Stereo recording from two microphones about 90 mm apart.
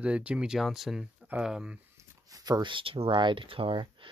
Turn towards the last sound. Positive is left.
turn(degrees=-75)  # may be behind; listen again after turning